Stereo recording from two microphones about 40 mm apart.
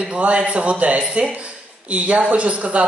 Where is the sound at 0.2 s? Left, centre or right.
Right.